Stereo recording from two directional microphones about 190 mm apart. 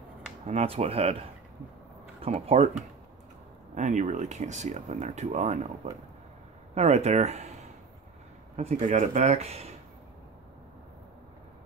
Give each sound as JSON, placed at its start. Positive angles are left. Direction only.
{"t": 0.5, "sound": "speech", "side_deg": -30}
{"t": 2.2, "sound": "speech", "side_deg": -30}
{"t": 6.7, "sound": "speech", "side_deg": -35}
{"t": 8.5, "sound": "speech", "side_deg": -35}